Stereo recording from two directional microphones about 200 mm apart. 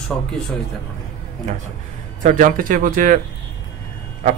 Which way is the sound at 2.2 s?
40° right (ahead or behind).